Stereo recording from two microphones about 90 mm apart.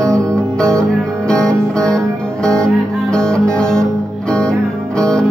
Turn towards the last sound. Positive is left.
turn(degrees=10)  # may be behind; listen again after turning